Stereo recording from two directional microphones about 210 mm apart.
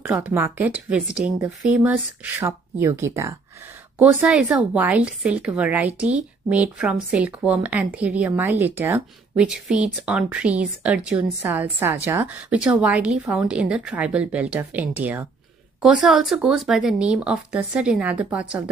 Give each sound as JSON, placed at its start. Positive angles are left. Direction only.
{"t": 0.0, "sound": "a woman's voice", "side_deg": -5}